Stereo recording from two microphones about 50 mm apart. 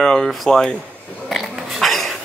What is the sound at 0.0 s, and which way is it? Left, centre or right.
Speech, centre.